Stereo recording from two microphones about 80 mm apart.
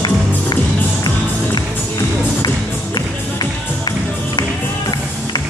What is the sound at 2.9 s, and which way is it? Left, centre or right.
Music, left.